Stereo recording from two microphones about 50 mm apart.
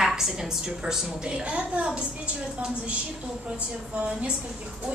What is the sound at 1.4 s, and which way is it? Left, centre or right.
Speech, right.